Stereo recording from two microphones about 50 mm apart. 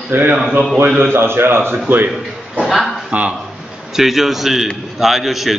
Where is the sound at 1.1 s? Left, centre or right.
Right.